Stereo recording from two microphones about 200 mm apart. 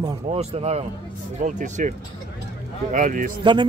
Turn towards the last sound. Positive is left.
turn(degrees=-40)  # may be behind; listen again after turning